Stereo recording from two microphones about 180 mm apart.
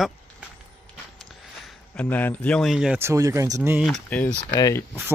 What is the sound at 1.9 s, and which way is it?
Speech, 10° left (ahead or behind).